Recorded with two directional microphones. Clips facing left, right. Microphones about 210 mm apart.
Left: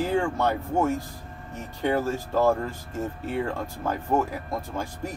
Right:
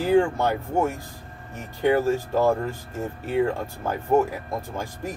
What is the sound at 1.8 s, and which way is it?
Speech, 15° right (ahead or behind).